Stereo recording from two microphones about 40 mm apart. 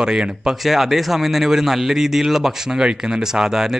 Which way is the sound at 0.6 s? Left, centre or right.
Centre.